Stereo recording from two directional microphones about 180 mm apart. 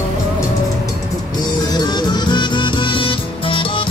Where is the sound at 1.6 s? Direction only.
25° left (ahead or behind).